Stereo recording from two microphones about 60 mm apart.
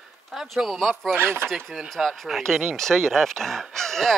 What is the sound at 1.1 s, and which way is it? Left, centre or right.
Speech, right.